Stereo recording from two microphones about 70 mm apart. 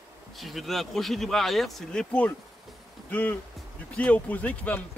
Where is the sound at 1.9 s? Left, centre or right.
Centre.